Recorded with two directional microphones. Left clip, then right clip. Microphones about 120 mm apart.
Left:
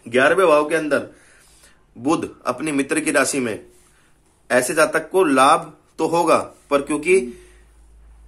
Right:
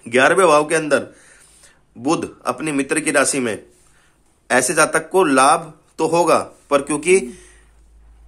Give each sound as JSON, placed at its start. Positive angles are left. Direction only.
{"t": 0.0, "sound": "speech", "side_deg": -40}